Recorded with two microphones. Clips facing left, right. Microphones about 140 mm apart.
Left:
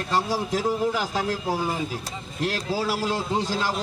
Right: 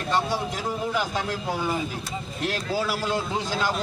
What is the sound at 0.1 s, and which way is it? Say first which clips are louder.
A man's voice: left 1 dB; 35° left (ahead or behind).